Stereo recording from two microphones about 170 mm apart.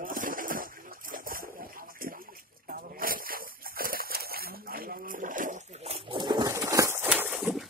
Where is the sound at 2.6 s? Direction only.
60° right (ahead or behind).